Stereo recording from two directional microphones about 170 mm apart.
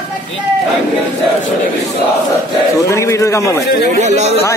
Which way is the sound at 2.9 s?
15° left (ahead or behind).